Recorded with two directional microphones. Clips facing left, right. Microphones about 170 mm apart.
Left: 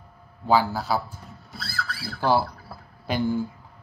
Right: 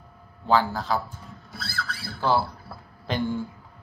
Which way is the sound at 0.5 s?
10° left (ahead or behind).